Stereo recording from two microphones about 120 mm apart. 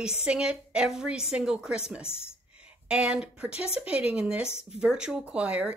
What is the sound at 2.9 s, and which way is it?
Speech, 10° right (ahead or behind).